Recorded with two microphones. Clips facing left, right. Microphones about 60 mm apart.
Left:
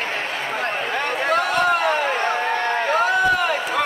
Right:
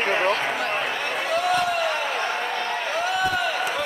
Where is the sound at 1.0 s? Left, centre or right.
Left.